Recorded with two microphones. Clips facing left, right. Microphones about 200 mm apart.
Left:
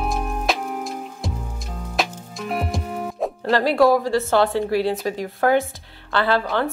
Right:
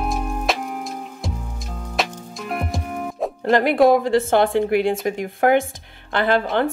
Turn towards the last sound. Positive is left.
turn(degrees=-20)  # may be behind; listen again after turning